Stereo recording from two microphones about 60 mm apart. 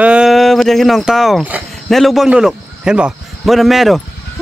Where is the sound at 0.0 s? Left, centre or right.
Centre.